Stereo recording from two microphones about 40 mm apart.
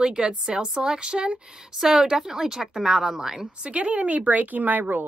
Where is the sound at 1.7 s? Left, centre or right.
Centre.